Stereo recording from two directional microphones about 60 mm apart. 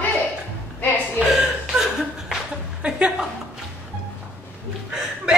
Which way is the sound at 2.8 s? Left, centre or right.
Centre.